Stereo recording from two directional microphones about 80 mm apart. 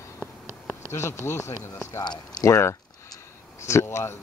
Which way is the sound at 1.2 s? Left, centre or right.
Left.